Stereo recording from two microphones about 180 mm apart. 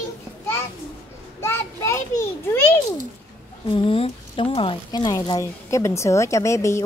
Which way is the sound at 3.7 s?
30° left (ahead or behind).